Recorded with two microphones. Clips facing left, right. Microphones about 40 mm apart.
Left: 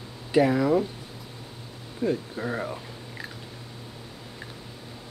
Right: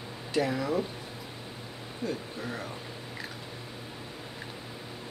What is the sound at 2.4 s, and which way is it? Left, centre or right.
Speech, left.